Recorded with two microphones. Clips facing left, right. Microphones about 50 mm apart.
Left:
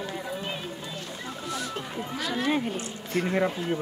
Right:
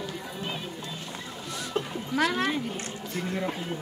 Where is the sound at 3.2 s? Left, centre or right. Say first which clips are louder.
Left 6 dB; left.